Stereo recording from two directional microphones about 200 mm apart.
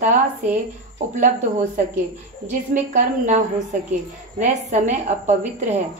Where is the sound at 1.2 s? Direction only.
35° right (ahead or behind).